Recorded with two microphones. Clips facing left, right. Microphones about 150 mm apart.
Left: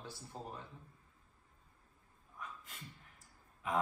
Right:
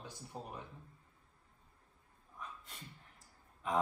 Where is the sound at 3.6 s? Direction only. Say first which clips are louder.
Right 1 dB; 5° left (ahead or behind).